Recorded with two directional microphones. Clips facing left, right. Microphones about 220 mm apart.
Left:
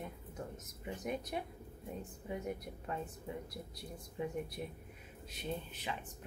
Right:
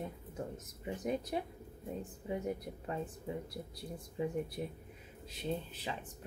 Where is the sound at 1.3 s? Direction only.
30° right (ahead or behind).